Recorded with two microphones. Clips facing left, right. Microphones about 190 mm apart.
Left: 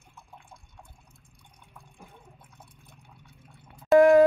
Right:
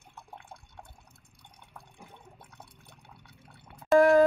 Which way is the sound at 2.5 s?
70° right (ahead or behind).